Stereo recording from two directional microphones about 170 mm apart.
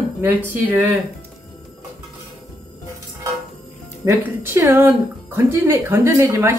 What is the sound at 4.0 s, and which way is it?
Speech, 15° right (ahead or behind).